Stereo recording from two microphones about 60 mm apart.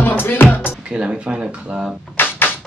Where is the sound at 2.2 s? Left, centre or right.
Left.